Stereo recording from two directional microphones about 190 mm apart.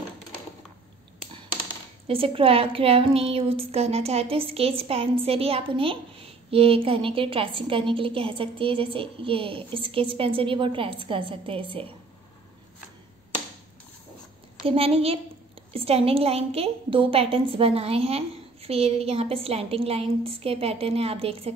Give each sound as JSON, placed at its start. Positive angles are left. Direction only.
{"t": 2.0, "sound": "a woman's voice", "side_deg": -30}
{"t": 14.7, "sound": "a woman's voice", "side_deg": -30}